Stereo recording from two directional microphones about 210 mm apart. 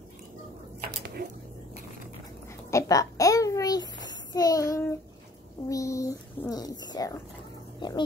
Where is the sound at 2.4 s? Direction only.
15° left (ahead or behind).